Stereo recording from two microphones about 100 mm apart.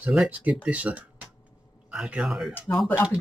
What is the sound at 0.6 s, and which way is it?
A man's voice, 15° right (ahead or behind).